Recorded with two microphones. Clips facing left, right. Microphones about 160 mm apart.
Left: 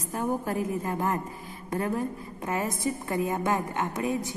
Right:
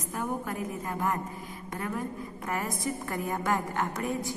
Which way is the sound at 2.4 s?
20° left (ahead or behind).